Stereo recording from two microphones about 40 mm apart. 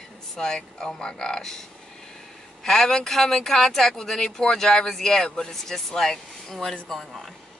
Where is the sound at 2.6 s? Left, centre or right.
Centre.